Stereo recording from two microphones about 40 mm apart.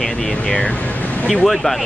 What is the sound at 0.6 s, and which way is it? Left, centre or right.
Speech, left.